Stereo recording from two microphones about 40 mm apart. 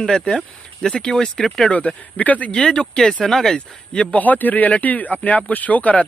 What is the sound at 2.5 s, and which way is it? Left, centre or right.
Speech, left.